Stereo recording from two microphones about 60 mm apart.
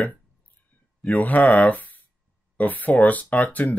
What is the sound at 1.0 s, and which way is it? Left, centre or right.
Speech, left.